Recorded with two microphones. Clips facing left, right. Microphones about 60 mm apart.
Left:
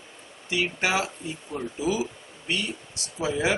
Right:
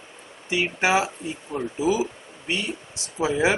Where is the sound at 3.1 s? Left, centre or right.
Right.